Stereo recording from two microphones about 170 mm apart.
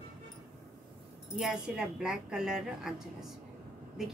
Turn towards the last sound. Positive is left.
turn(degrees=-5)  # may be behind; listen again after turning